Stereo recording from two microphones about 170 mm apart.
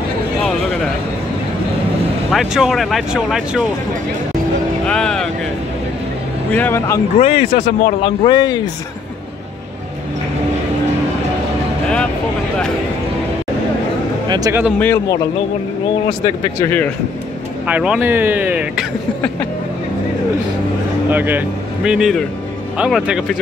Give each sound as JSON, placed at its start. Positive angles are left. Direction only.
{"t": 2.3, "sound": "speech", "side_deg": 0}
{"t": 4.8, "sound": "vehicle", "side_deg": 5}
{"t": 6.5, "sound": "speech", "side_deg": 10}
{"t": 7.2, "sound": "speech", "side_deg": 35}
{"t": 14.3, "sound": "speech", "side_deg": -20}
{"t": 16.3, "sound": "speech", "side_deg": 15}
{"t": 17.6, "sound": "speech", "side_deg": -10}
{"t": 21.1, "sound": "speech", "side_deg": -10}